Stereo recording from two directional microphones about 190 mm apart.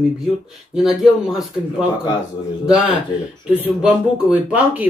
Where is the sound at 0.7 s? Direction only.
Centre (ahead or behind).